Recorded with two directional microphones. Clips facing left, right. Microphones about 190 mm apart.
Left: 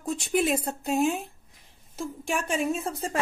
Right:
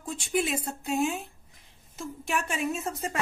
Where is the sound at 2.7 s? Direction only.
30° left (ahead or behind).